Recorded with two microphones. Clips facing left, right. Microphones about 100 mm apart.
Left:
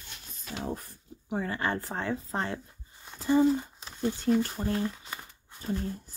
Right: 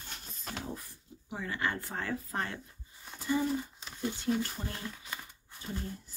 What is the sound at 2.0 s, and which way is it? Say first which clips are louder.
Speech: left 4 dB; 25° left (ahead or behind).